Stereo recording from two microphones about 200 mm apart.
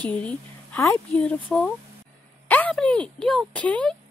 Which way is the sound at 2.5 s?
5° left (ahead or behind).